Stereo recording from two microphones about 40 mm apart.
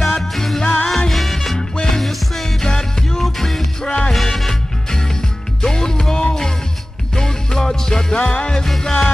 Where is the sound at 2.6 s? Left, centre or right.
Centre.